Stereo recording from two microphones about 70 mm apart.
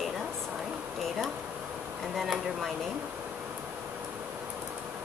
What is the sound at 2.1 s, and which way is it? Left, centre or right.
Speech, centre.